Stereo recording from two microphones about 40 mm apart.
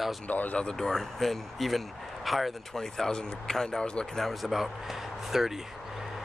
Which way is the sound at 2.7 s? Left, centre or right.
Centre.